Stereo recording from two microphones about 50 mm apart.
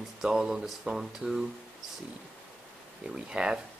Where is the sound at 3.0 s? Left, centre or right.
Centre.